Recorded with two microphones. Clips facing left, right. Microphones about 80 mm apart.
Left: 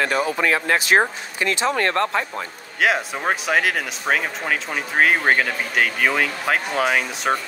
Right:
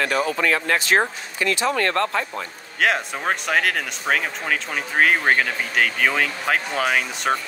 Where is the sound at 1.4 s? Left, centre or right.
Left.